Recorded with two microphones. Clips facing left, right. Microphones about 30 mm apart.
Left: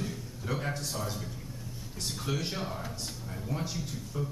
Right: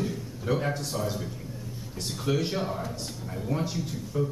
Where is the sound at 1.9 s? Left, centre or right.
Centre.